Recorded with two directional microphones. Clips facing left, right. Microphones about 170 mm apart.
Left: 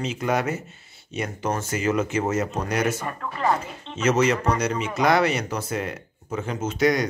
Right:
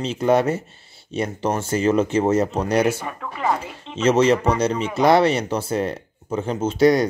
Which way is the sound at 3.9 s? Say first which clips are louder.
Right 4 dB; 30° right (ahead or behind).